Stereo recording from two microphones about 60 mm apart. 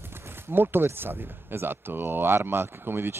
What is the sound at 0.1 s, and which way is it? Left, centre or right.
Speech, right.